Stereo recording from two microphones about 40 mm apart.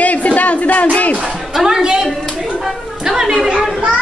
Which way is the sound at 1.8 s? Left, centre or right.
Right.